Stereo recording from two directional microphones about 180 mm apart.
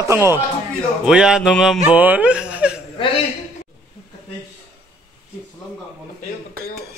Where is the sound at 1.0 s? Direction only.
5° right (ahead or behind).